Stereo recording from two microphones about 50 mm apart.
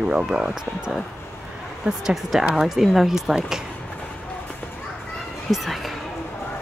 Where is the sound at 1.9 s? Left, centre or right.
Centre.